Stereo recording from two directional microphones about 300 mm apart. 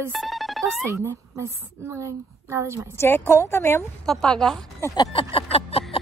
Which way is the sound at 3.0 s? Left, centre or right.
Centre.